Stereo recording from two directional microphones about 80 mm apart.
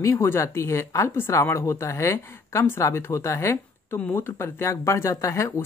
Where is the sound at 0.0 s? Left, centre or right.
Left.